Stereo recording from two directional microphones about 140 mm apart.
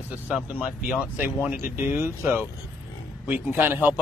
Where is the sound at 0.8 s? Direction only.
10° right (ahead or behind).